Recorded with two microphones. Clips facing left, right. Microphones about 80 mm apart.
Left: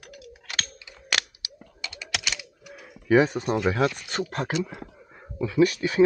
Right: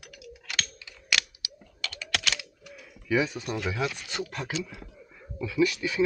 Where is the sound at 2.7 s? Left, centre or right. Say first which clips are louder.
Left 7 dB; left.